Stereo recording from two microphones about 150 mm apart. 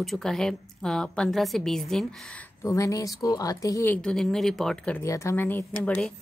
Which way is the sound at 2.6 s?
20° left (ahead or behind).